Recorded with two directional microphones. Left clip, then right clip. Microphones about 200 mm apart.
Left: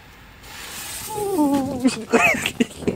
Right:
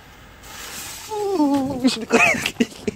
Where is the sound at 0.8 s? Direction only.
15° right (ahead or behind).